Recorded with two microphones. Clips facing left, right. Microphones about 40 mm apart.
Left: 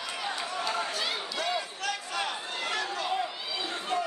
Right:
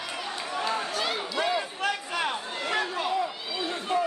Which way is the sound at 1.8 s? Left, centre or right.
Right.